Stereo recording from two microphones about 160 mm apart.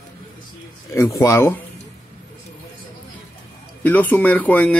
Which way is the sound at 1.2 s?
15° left (ahead or behind).